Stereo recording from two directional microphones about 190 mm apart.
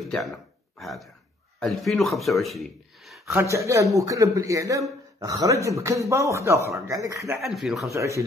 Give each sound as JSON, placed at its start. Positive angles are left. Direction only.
{"t": 0.1, "sound": "speech", "side_deg": 0}
{"t": 3.3, "sound": "a man's voice", "side_deg": -15}
{"t": 7.4, "sound": "speech", "side_deg": 0}
{"t": 7.9, "sound": "a man's voice", "side_deg": -15}